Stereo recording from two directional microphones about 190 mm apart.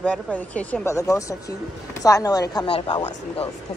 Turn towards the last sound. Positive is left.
turn(degrees=25)  # may be behind; listen again after turning